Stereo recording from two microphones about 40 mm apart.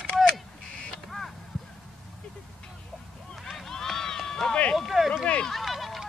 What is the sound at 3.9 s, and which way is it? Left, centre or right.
Run, centre.